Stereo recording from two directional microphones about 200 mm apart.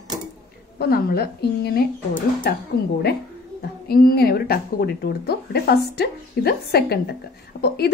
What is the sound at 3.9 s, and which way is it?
A woman's voice, 50° left (ahead or behind).